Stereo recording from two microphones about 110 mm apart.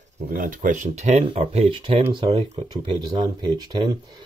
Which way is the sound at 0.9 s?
85° right.